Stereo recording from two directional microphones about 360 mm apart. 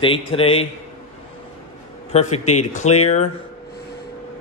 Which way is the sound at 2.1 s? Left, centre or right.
Centre.